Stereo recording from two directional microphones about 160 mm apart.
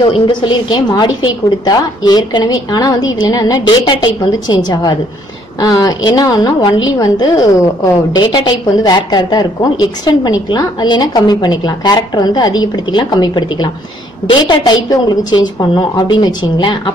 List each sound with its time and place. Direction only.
0.0 s a woman's voice: 30° left (ahead or behind)